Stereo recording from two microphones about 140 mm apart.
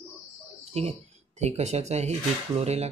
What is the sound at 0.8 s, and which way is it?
Speech, 45° right (ahead or behind).